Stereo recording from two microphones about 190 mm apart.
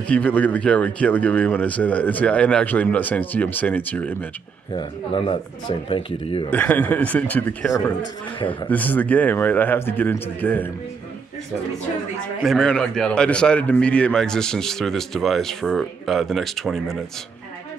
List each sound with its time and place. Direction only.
0.1 s speech: 10° left (ahead or behind)
4.7 s speech: 25° left (ahead or behind)
6.5 s speech: 10° left (ahead or behind)
12.4 s a man's voice: 5° left (ahead or behind)